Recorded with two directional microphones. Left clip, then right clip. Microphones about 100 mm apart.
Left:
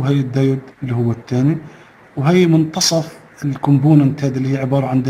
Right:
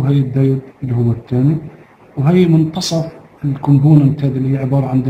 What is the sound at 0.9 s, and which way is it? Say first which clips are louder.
Speech: right 1 dB; 55° left (ahead or behind).